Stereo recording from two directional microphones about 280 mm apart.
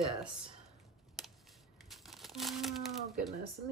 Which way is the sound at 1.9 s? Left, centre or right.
Centre.